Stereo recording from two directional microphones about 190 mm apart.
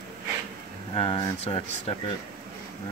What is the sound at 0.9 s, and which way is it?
Speech, 25° left (ahead or behind).